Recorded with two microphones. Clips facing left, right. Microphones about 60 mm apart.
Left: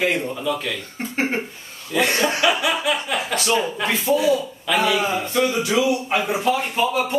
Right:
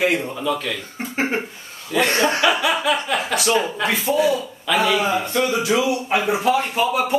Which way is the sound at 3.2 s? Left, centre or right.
Centre.